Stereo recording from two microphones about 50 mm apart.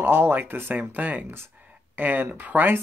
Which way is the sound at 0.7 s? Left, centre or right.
Right.